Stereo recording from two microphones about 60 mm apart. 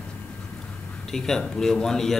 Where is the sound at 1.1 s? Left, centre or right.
Centre.